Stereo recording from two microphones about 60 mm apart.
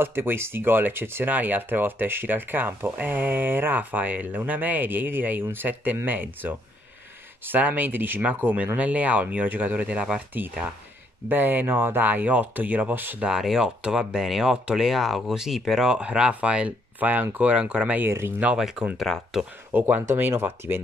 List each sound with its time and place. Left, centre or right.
0.0 s speech: right
13.2 s speech: centre
16.0 s speech: centre
19.1 s speech: centre
19.7 s speech: right